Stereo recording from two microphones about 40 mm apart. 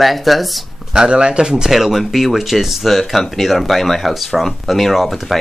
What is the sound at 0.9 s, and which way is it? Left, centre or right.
Speech, right.